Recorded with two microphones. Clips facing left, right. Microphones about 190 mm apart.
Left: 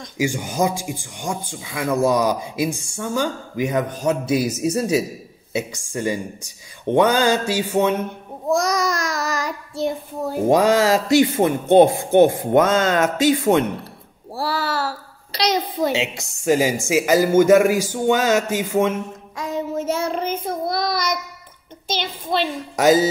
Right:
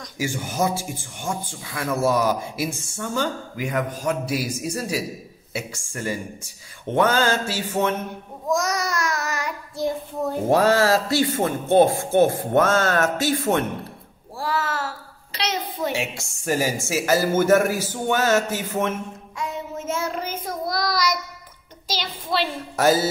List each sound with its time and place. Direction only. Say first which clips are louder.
0.0 s speech: left 5 dB; 15° left (ahead or behind)
8.5 s child singing: left 4 dB; 35° left (ahead or behind)
10.4 s speech: left 3 dB; 15° left (ahead or behind)
14.3 s a sound: left 2 dB; 35° left (ahead or behind)
15.9 s speech: left 4 dB; 20° left (ahead or behind)
19.3 s child singing: left 6 dB; 40° left (ahead or behind)
20.9 s child singing: even; 55° left (ahead or behind)
21.8 s a sound: left 3 dB; 50° left (ahead or behind)
22.4 s speech: left 2 dB; 15° left (ahead or behind)